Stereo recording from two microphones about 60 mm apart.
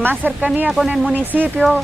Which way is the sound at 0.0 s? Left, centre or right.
Right.